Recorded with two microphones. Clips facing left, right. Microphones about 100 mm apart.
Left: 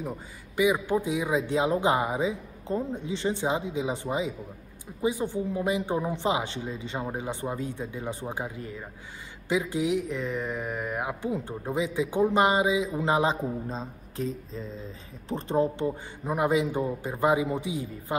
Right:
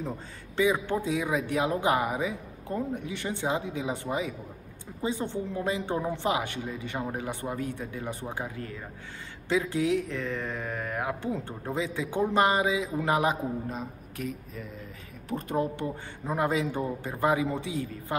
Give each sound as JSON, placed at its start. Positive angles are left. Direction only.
{"t": 0.0, "sound": "a man's voice", "side_deg": 10}